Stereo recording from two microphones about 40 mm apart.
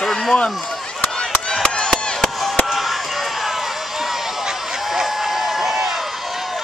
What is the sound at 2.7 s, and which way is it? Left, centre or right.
Run, centre.